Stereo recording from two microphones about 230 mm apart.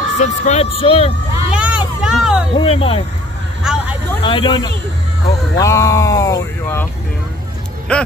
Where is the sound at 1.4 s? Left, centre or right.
Centre.